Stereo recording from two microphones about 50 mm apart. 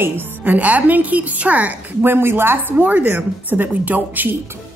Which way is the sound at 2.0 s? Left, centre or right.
Right.